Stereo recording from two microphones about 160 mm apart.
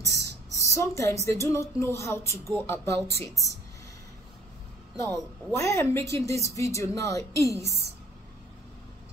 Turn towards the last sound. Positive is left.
turn(degrees=20)  # may be behind; listen again after turning